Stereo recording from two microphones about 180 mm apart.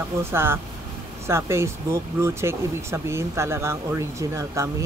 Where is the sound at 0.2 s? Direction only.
15° right (ahead or behind).